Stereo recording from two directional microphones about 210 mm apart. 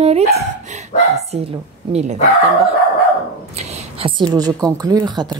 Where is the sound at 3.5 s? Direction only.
30° right (ahead or behind).